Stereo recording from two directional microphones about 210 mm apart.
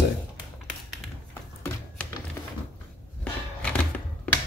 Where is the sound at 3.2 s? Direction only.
5° left (ahead or behind).